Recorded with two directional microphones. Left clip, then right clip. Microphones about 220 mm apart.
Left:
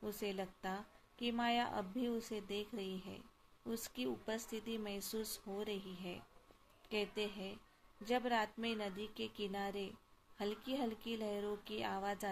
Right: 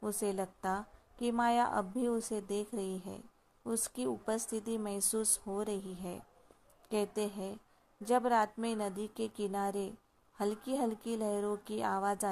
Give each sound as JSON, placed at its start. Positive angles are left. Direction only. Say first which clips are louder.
{"t": 0.0, "sound": "a woman's voice", "louder": "right 7 dB", "side_deg": -30}